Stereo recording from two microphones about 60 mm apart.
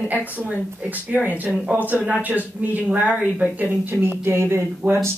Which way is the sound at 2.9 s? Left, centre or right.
Centre.